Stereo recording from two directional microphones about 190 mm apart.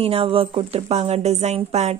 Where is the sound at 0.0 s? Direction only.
30° right (ahead or behind).